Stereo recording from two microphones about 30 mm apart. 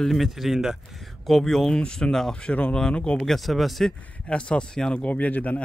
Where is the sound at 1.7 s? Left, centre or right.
Left.